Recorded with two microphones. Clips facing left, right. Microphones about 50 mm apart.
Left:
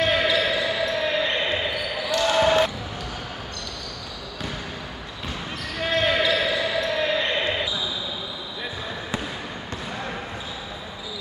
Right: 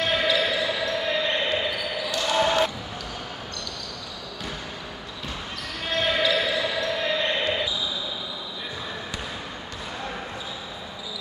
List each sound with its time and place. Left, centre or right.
0.1 s basketball bounce: left
5.8 s basketball bounce: left